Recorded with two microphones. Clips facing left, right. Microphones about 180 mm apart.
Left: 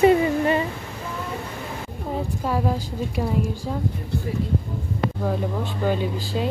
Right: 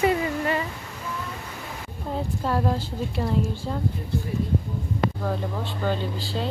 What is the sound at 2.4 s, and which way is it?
Speech, 10° left (ahead or behind).